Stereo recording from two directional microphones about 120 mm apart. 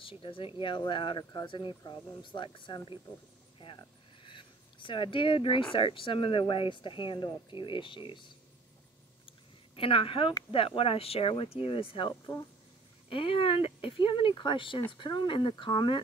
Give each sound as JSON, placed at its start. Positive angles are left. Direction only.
{"t": 0.0, "sound": "speech", "side_deg": 45}
{"t": 9.8, "sound": "speech", "side_deg": 50}